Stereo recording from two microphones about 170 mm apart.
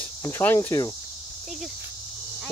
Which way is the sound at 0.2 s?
15° left (ahead or behind).